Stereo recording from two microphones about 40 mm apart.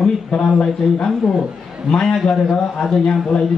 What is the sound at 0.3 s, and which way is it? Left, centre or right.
A man's voice, left.